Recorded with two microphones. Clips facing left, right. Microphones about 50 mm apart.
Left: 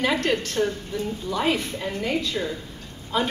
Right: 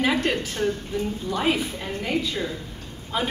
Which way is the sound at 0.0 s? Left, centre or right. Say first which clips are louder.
Even; centre.